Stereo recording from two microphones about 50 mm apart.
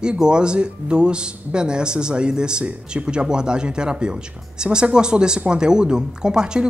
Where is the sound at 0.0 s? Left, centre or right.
Centre.